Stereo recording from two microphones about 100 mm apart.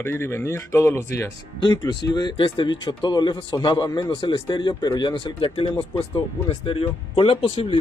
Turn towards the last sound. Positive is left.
turn(degrees=65)  # may be behind; listen again after turning